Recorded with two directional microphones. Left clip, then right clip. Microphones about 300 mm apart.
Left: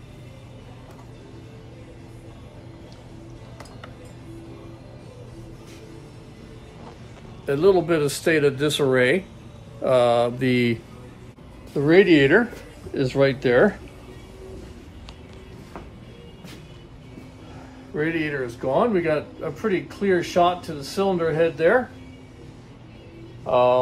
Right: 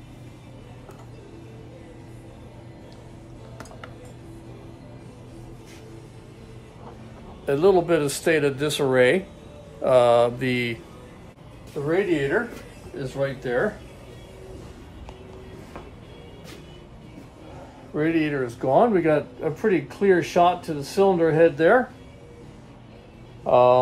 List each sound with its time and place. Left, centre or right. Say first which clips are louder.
7.4 s speech: even; centre
11.8 s speech: left 7 dB; left
17.9 s speech: right 1 dB; centre
23.4 s speech: right 2 dB; right